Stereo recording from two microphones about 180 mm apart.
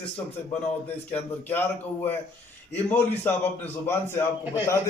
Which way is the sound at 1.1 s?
10° left (ahead or behind).